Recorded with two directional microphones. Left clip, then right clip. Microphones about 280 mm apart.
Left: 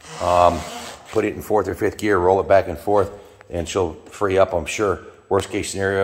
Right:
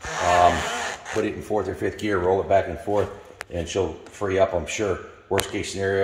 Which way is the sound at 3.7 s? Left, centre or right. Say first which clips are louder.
Left 4 dB; centre.